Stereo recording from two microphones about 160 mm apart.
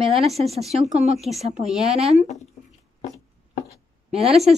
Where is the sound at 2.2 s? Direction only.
45° left (ahead or behind).